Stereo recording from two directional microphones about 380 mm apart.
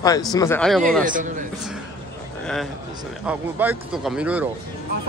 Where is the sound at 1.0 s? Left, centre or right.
Centre.